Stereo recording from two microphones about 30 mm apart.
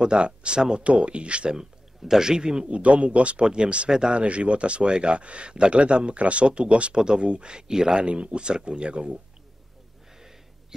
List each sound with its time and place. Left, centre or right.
0.0 s speech: right
0.6 s a man's voice: right
0.8 s speech: right
1.5 s speech: right
2.7 s speech: right
3.4 s a man's voice: right
8.0 s speech: right